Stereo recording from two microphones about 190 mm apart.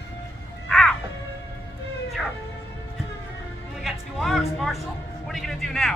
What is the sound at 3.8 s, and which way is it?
Music, centre (ahead or behind).